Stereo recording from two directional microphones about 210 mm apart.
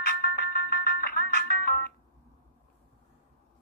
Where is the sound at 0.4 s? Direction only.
45° left (ahead or behind).